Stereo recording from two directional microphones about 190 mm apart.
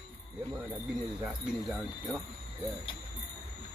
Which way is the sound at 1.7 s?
Centre (ahead or behind).